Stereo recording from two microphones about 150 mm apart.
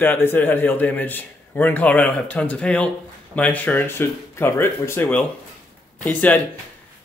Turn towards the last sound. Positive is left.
turn(degrees=10)  # may be behind; listen again after turning